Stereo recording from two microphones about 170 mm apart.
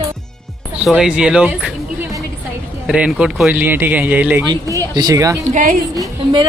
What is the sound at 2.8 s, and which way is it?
Speech, 5° right (ahead or behind).